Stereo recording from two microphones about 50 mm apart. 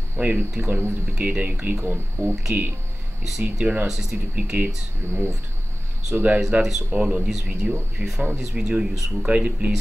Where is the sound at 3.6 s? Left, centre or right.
Centre.